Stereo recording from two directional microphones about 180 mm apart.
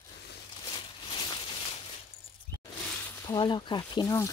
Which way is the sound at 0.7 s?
25° left (ahead or behind).